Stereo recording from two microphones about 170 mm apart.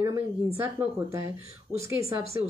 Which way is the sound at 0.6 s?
15° right (ahead or behind).